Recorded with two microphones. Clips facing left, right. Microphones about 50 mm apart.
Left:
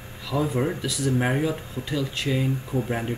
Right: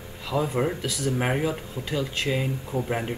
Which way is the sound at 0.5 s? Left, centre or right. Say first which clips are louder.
Even; centre.